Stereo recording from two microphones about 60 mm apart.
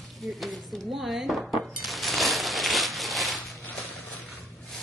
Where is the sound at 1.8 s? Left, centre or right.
Centre.